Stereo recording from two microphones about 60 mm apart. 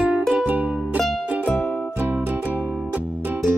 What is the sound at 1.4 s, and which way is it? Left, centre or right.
Music, left.